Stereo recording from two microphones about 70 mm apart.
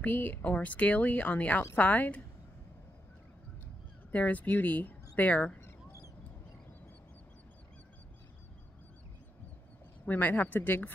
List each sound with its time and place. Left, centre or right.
0.0 s speech: left
4.1 s speech: left
10.0 s speech: left